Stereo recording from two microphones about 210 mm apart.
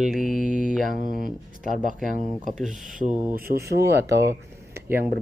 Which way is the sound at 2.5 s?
Centre (ahead or behind).